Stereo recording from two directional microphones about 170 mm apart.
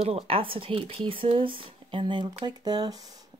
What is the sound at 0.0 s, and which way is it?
Speech, 35° right (ahead or behind).